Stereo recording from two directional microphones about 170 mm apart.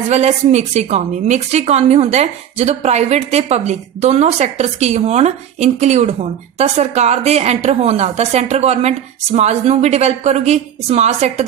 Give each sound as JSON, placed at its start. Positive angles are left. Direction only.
{"t": 0.1, "sound": "a woman's voice", "side_deg": -40}